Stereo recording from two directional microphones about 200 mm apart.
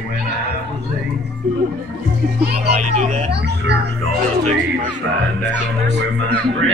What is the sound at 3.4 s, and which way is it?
Speech, 55° right (ahead or behind).